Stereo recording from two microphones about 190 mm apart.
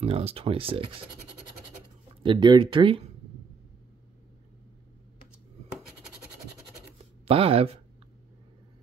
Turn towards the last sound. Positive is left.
turn(degrees=-30)  # may be behind; listen again after turning